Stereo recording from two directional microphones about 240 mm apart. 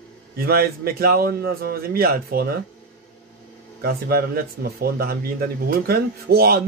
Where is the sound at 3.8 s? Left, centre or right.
Right.